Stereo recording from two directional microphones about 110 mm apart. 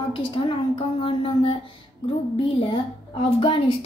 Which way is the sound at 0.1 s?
50° left (ahead or behind).